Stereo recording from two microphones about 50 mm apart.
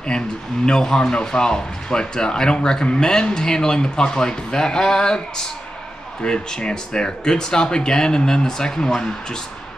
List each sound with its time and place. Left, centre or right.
0.7 s speech: centre
6.2 s speech: centre